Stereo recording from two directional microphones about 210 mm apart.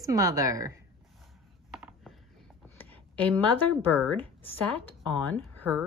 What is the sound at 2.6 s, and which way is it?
Speech, 10° left (ahead or behind).